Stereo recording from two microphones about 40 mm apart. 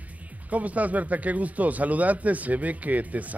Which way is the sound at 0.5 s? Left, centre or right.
Right.